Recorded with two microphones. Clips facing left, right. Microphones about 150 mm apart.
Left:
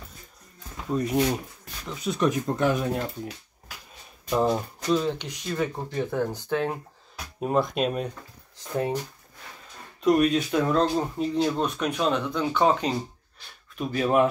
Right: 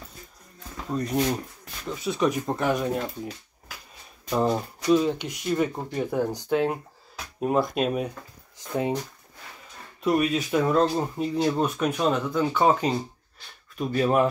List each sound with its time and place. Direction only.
0.9 s speech: 5° left (ahead or behind)
4.3 s speech: 5° right (ahead or behind)
10.0 s speech: 5° right (ahead or behind)